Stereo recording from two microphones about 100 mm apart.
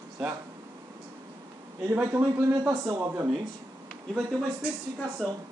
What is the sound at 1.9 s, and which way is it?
Speech, 20° right (ahead or behind).